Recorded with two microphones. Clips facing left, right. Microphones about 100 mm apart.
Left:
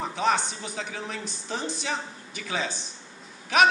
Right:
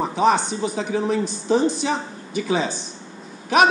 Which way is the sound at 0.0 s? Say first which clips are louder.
Right 7 dB; 20° right (ahead or behind).